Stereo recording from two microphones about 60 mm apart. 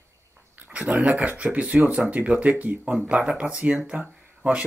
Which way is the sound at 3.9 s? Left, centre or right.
Centre.